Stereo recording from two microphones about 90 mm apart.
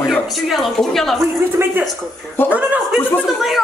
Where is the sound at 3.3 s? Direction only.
Centre (ahead or behind).